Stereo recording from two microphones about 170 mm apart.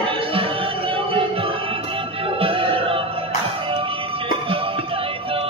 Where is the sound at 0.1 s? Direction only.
35° right (ahead or behind).